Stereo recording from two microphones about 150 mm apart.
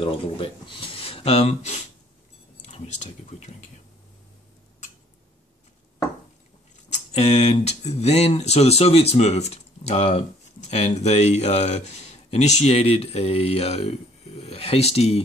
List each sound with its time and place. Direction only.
0.0 s speech: 35° left (ahead or behind)
6.9 s speech: 50° left (ahead or behind)